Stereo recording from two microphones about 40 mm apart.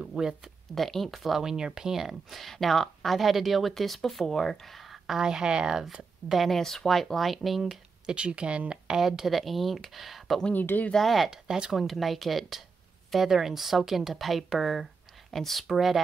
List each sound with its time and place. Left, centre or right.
0.0 s speech: centre
0.7 s speech: centre
6.2 s speech: centre
6.5 s speech: centre
8.1 s speech: right
9.0 s speech: centre
10.5 s speech: left
11.0 s speech: centre
11.2 s speech: centre
11.7 s speech: centre